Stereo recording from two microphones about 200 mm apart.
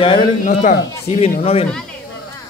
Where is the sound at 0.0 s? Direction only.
30° left (ahead or behind).